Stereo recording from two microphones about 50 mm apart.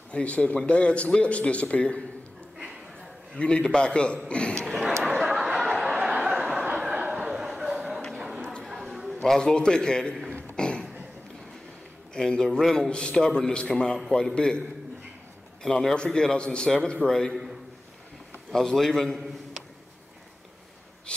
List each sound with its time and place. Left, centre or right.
0.1 s a man's voice: left
3.3 s a man's voice: centre
4.6 s a sound: centre
6.5 s a sound: right; by 9.3 s centre
9.3 s a man's voice: centre
10.5 s a sound: centre
12.1 s a man's voice: centre
12.9 s a man's voice: centre
15.6 s a man's voice: centre
18.5 s a man's voice: centre